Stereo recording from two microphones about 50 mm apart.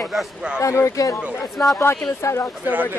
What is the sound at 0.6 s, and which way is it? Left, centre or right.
Speech, left.